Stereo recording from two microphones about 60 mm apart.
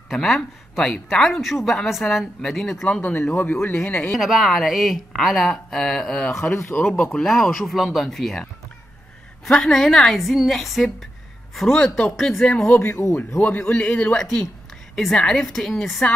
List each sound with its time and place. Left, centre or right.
0.1 s speech: centre
3.0 s a man's voice: left
4.1 s speech: centre
9.5 s speech: centre
13.0 s speech: left
13.4 s a man's voice: left
14.1 s speech: centre